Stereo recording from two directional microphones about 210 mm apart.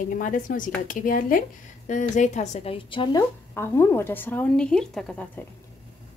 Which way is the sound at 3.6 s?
10° left (ahead or behind).